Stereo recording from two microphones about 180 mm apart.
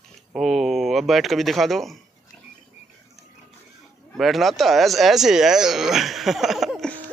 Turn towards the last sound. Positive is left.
turn(degrees=5)  # may be behind; listen again after turning